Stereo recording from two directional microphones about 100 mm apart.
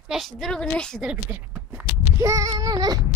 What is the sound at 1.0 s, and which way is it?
Speech, 15° right (ahead or behind).